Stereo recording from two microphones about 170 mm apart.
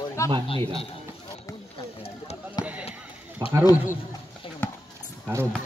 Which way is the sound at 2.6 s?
25° left (ahead or behind).